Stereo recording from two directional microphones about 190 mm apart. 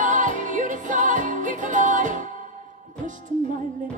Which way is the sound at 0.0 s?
40° right (ahead or behind).